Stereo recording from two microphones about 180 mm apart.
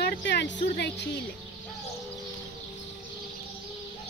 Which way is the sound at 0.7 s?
70° left (ahead or behind).